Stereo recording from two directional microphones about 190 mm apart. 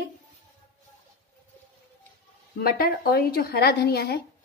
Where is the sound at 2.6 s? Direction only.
55° left (ahead or behind).